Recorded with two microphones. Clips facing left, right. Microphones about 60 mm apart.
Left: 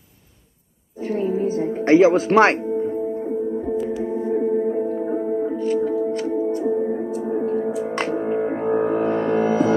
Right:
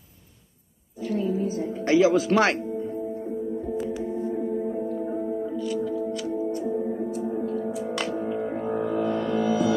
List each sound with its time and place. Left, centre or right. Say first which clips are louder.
1.0 s music: left 4 dB; left